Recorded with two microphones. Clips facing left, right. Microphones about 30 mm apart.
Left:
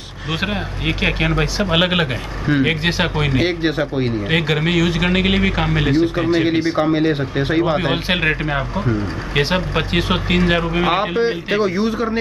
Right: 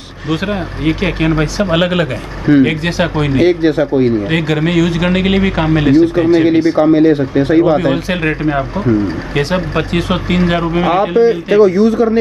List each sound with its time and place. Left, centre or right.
0.3 s speech: centre
2.4 s speech: centre; by 9.6 s left
9.8 s speech: centre
10.9 s speech: centre